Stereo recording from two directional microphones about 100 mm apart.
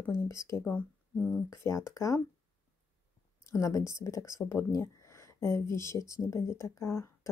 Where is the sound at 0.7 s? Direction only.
10° left (ahead or behind).